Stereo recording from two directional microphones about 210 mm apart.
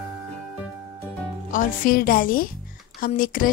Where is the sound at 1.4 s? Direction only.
40° left (ahead or behind).